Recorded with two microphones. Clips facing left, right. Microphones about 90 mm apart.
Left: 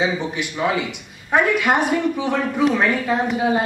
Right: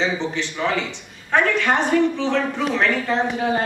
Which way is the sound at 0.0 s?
10° left (ahead or behind).